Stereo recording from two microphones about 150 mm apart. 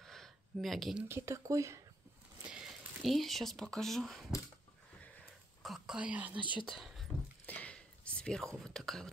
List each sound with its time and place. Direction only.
0.0 s a sound: centre (ahead or behind)
1.0 s speech: 20° right (ahead or behind)
2.4 s speech: 5° right (ahead or behind)
5.6 s speech: centre (ahead or behind)
6.8 s a sound: centre (ahead or behind)
8.6 s speech: centre (ahead or behind)